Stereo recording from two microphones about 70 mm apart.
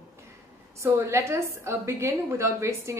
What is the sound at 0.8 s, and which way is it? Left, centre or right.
A woman's voice, right.